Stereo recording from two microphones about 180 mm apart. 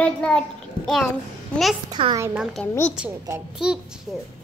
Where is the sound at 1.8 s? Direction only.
30° right (ahead or behind).